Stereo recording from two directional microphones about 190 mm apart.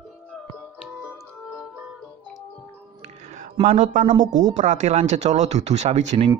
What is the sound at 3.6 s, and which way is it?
Speech, 45° right (ahead or behind).